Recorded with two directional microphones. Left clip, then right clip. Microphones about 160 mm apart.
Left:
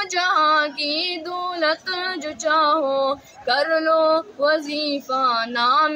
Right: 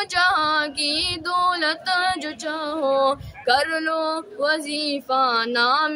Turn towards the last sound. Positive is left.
turn(degrees=-30)  # may be behind; listen again after turning